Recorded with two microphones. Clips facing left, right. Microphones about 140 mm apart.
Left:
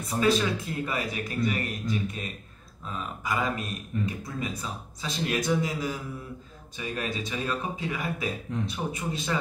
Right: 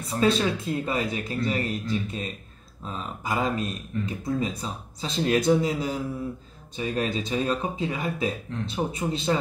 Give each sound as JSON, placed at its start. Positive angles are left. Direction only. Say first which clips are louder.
{"t": 0.2, "sound": "speech", "louder": "right 2 dB", "side_deg": -30}